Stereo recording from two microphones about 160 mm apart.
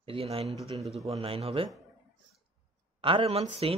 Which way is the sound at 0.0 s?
35° right (ahead or behind).